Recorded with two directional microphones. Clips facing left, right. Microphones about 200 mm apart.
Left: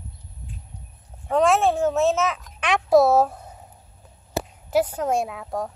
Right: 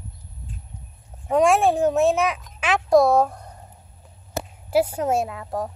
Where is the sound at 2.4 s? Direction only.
5° right (ahead or behind).